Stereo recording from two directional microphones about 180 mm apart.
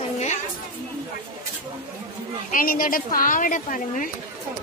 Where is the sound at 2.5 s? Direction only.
50° left (ahead or behind).